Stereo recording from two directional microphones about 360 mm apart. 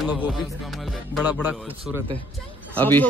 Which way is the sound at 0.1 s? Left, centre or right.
Centre.